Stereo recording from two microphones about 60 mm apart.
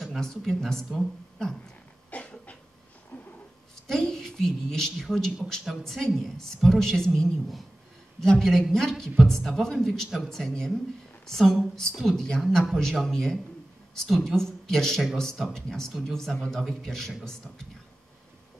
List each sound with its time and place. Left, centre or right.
0.2 s speech: centre
2.0 s a sound: left
3.1 s cat: left
3.8 s a woman's voice: centre
10.0 s speech: centre
10.3 s speech: centre